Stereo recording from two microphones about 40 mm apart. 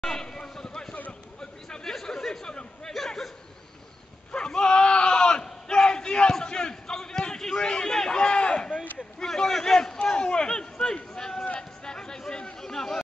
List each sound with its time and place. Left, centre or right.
0.0 s basketball bounce: centre
2.0 s chatter: centre
4.3 s battle cry: left
7.5 s a sound: left
11.1 s run: centre
11.8 s chatter: centre